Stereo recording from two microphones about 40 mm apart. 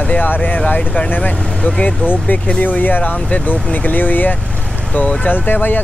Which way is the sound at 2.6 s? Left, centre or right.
Left.